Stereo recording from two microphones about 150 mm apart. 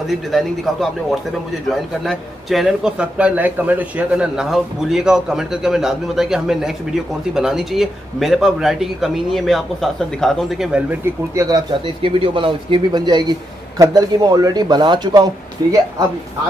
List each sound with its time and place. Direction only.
0.1 s a man's voice: centre (ahead or behind)
11.3 s a man's voice: 25° right (ahead or behind)
12.0 s a man's voice: 35° right (ahead or behind)